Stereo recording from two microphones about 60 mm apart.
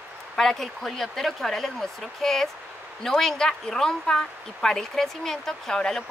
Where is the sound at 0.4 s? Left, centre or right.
Centre.